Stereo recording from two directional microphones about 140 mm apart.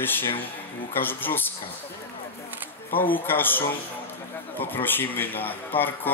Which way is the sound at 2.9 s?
15° left (ahead or behind).